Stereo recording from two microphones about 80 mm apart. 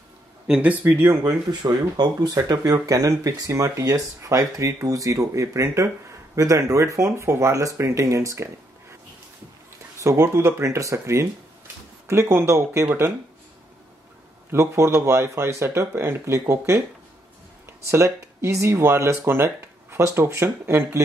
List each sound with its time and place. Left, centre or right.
0.5 s speech: centre
0.8 s speech: right
1.2 s speech: right
10.0 s speech: right
14.5 s speech: right
17.8 s speech: right